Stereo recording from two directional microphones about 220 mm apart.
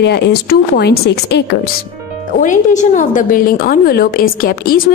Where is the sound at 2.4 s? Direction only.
35° left (ahead or behind).